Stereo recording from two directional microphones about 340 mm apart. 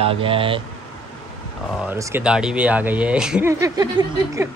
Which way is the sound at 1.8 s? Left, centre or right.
Centre.